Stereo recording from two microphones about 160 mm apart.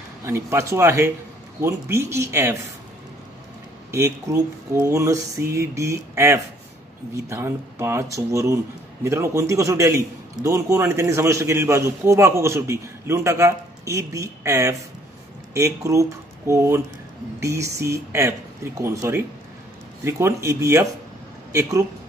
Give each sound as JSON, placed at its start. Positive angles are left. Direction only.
{"t": 0.2, "sound": "a man's voice", "side_deg": -15}
{"t": 3.9, "sound": "a man's voice", "side_deg": -15}